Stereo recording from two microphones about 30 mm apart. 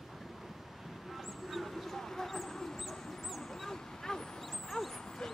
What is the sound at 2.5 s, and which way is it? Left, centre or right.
Dog, centre.